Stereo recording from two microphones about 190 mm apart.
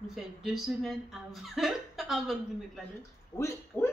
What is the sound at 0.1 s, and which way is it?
Speech, centre (ahead or behind).